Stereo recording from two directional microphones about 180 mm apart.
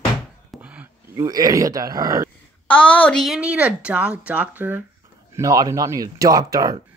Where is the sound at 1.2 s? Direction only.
20° right (ahead or behind).